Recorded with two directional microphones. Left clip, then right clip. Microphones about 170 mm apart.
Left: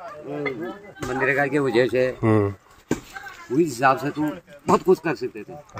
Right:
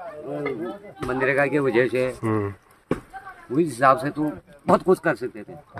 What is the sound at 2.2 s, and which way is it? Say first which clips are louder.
Speech: left 5 dB; 30° left (ahead or behind).